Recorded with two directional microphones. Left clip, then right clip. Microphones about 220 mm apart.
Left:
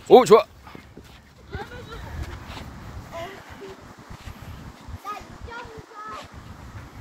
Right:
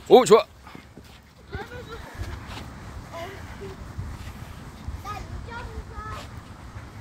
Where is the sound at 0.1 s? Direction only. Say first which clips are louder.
Left 2 dB; 10° left (ahead or behind).